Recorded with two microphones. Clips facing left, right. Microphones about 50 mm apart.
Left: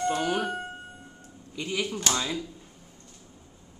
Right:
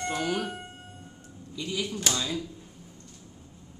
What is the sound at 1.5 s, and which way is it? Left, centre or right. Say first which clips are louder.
Speech: left 2 dB; left.